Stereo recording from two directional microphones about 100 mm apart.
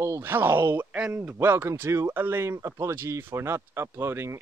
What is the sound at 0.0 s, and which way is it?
Speech, 25° right (ahead or behind).